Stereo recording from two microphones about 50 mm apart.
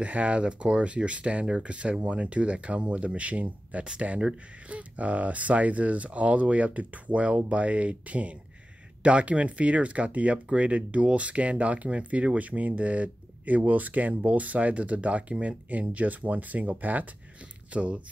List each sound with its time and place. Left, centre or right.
0.0 s speech: right